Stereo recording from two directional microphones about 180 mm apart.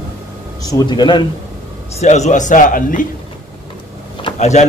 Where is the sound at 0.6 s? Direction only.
20° left (ahead or behind).